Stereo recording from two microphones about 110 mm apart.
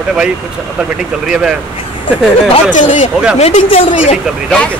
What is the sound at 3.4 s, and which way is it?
Speech, 65° left (ahead or behind).